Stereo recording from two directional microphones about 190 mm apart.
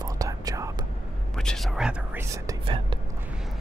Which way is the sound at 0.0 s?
20° right (ahead or behind).